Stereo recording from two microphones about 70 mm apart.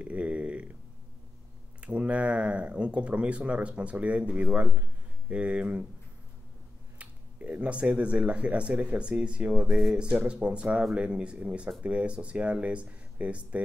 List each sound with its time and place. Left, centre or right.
0.0 s a sound: centre
1.8 s speech: centre
7.0 s speech: right